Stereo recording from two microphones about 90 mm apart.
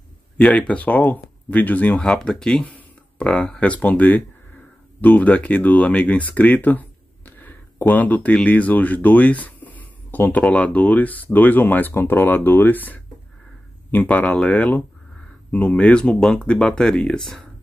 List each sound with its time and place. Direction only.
0.4 s speech: 15° left (ahead or behind)